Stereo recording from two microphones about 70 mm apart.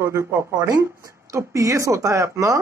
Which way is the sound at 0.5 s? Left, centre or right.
Right.